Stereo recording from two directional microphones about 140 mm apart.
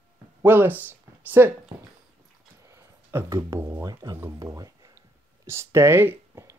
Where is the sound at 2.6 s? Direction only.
20° right (ahead or behind).